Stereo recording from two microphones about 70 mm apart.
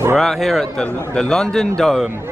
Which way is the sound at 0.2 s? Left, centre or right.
Centre.